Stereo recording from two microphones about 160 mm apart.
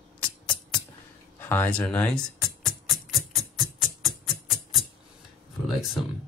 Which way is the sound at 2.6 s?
Centre (ahead or behind).